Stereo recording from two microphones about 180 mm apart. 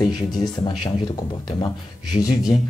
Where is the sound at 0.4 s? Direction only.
25° left (ahead or behind).